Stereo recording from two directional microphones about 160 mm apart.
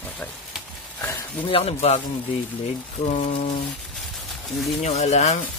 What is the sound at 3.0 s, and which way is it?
Speech, 45° left (ahead or behind).